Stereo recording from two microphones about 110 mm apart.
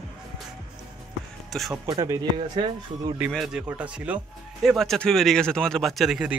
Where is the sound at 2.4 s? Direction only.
45° right (ahead or behind).